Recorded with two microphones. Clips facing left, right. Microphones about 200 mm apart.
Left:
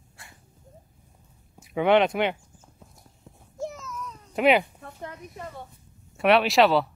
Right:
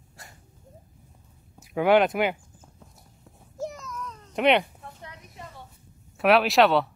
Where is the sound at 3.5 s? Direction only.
Centre (ahead or behind).